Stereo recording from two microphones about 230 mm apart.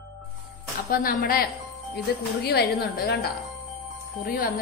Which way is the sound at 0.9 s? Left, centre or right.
Left.